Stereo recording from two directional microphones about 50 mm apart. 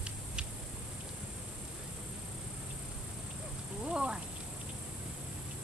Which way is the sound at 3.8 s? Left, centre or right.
Centre.